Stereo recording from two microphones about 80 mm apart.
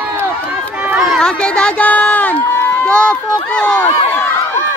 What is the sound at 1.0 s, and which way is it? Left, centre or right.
Children playing, centre.